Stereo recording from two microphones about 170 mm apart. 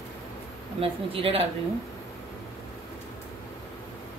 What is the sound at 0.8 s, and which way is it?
Speech, 35° right (ahead or behind).